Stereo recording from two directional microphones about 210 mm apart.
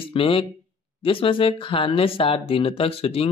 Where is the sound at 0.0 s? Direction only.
25° left (ahead or behind).